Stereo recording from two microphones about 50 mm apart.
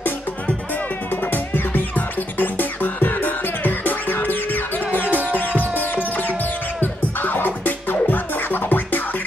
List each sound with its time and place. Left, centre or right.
1.2 s music: left